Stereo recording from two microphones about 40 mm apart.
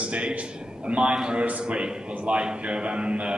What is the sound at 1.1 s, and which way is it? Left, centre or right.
Speech, centre.